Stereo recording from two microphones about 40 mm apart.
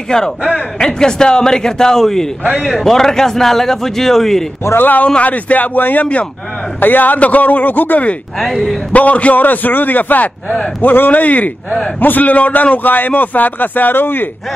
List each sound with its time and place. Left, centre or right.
0.1 s a man's voice: centre
4.7 s a man's voice: left
5.0 s a man's voice: left
5.8 s a man's voice: left
8.9 s a man's voice: left
10.8 s a man's voice: left